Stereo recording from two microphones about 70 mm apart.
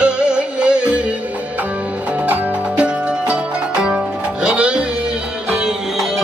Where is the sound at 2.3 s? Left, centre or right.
Centre.